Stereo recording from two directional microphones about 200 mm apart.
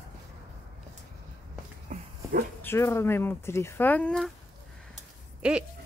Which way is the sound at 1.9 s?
45° right (ahead or behind).